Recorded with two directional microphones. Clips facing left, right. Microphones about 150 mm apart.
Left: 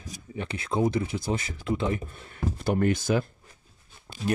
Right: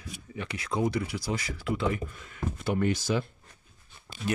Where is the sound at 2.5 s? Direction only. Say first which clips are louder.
Left 3 dB; 40° left (ahead or behind).